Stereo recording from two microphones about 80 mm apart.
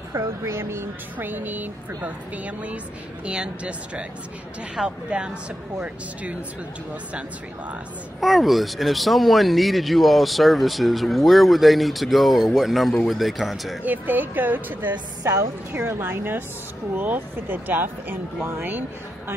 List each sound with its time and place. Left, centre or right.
0.1 s a woman's voice: right; by 5.3 s centre
8.2 s speech: centre
13.8 s a woman's voice: right
15.2 s a woman's voice: right